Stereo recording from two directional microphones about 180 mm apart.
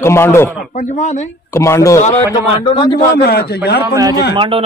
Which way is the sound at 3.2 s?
60° left (ahead or behind).